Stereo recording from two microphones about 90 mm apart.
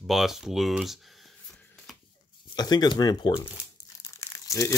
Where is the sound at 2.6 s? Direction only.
50° left (ahead or behind).